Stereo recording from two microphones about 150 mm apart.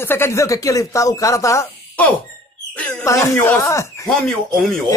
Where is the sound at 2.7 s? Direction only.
10° left (ahead or behind).